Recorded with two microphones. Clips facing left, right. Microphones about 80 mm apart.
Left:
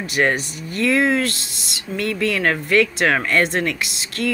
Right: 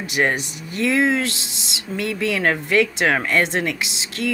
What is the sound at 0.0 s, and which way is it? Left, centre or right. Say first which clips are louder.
Speech: left 1 dB; centre.